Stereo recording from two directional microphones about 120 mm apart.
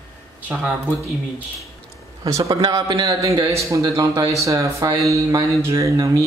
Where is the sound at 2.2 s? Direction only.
25° right (ahead or behind).